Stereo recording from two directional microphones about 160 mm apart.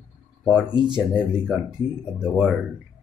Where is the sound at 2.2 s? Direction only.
5° right (ahead or behind).